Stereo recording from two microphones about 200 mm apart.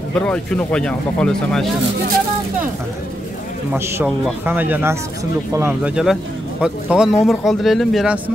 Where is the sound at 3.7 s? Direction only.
10° right (ahead or behind).